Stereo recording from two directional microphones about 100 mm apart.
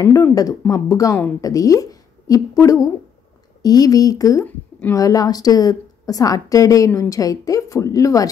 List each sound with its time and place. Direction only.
0.0 s a woman's voice: 35° left (ahead or behind)